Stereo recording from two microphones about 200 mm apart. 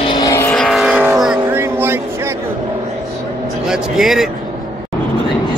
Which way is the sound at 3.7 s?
Centre (ahead or behind).